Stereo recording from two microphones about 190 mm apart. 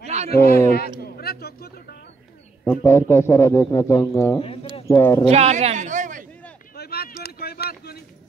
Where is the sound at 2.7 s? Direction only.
15° left (ahead or behind).